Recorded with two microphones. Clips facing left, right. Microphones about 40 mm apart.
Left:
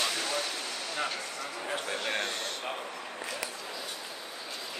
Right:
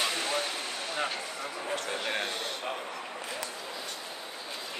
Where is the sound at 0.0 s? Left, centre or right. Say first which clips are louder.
Right 1 dB; right.